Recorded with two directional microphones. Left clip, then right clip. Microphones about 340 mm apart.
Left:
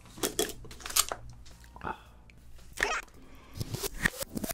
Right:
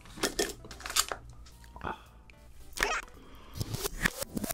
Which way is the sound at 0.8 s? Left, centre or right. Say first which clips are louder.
Even; right.